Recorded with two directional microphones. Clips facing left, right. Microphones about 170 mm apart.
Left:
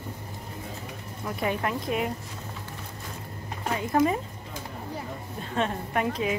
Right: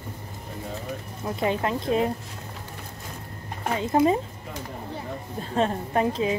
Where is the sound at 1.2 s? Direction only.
25° right (ahead or behind).